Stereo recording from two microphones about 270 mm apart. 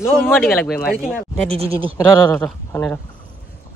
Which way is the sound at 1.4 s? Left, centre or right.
Right.